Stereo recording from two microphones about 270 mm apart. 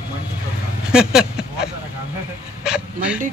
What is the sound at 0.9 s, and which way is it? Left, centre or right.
Speech, centre.